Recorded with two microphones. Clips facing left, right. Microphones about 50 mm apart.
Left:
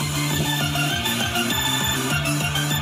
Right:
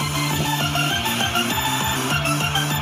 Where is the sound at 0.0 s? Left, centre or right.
Right.